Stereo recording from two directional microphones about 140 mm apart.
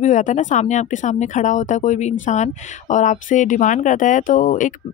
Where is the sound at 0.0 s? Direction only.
60° left (ahead or behind).